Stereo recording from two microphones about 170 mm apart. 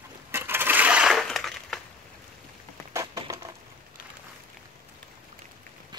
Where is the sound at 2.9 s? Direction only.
20° right (ahead or behind).